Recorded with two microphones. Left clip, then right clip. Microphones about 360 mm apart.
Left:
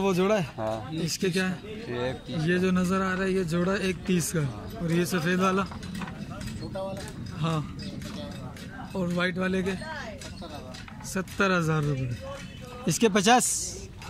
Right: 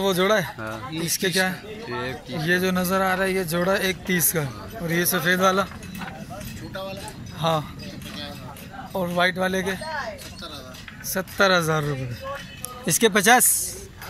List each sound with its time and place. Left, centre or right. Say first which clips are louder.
0.0 s a man's voice: right 5 dB; centre
1.9 s speech: right 1 dB; left
2.4 s a man's voice: right 5 dB; centre
7.3 s speech: right 9 dB; centre
8.9 s a man's voice: right 7 dB; centre
11.1 s a man's voice: right 7 dB; centre